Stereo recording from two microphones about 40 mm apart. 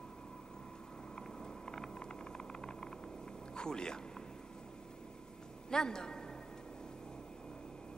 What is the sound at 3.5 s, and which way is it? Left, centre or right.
Speech, centre.